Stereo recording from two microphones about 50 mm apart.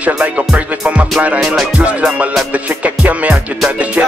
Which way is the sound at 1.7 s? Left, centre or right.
Right.